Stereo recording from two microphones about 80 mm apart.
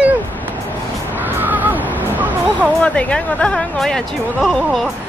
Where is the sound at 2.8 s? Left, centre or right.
Centre.